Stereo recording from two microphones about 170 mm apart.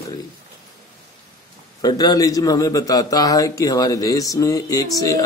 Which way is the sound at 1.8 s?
25° left (ahead or behind).